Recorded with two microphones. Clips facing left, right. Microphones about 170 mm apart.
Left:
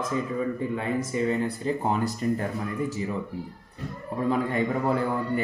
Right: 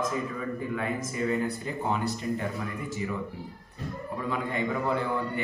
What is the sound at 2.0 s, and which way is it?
Speech, 40° left (ahead or behind).